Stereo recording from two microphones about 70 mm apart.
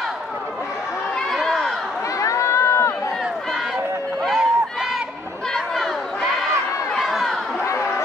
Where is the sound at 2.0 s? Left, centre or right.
Left.